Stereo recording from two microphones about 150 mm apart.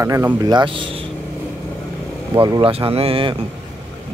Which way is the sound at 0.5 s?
35° right (ahead or behind).